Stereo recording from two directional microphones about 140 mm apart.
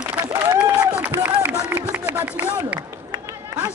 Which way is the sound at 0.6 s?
15° right (ahead or behind).